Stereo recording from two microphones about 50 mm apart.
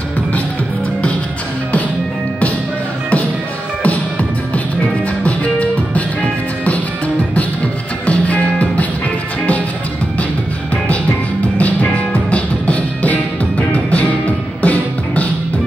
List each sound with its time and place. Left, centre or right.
3.8 s music: left
8.1 s music: left
11.5 s music: left